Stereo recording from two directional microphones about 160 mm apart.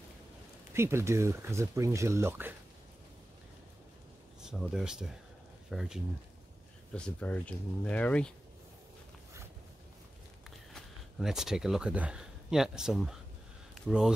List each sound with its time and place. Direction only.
0.7 s speech: 15° right (ahead or behind)
4.4 s speech: 5° right (ahead or behind)
6.9 s speech: 5° left (ahead or behind)
10.7 s speech: centre (ahead or behind)